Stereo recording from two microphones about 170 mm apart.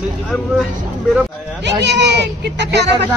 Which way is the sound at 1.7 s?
90° right.